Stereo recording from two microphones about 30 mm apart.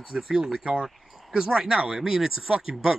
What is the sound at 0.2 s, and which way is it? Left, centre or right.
Speech, right.